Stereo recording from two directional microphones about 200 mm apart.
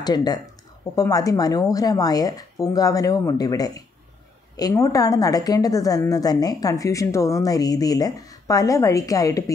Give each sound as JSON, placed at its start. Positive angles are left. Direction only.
{"t": 0.0, "sound": "a woman's voice", "side_deg": 20}